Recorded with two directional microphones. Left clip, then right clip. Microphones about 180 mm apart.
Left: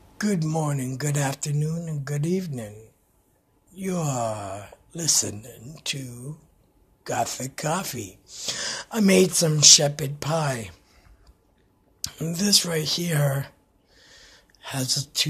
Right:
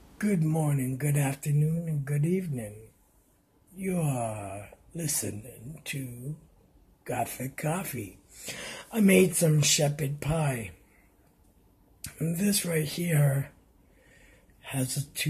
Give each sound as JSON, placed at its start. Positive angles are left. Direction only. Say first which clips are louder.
{"t": 0.2, "sound": "speech", "louder": "left 3 dB", "side_deg": 0}
{"t": 12.0, "sound": "speech", "louder": "left 4 dB", "side_deg": 0}
{"t": 14.1, "sound": "a sound", "louder": "left 8 dB", "side_deg": 0}